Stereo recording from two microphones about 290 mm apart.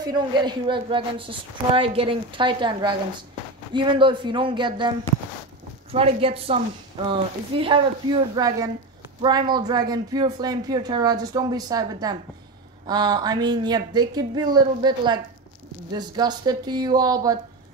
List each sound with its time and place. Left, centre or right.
0.0 s speech: centre
5.9 s a woman's voice: centre